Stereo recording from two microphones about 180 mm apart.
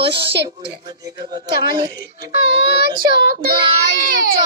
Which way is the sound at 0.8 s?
20° right (ahead or behind).